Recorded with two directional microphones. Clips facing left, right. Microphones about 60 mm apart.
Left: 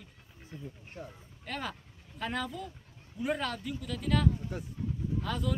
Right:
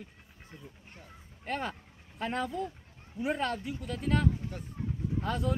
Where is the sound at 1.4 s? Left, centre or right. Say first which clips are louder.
Right 3 dB; right.